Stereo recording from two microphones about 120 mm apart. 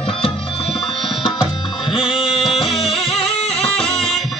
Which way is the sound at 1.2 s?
45° left (ahead or behind).